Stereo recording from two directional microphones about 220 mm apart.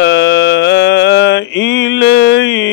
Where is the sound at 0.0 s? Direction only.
50° left (ahead or behind).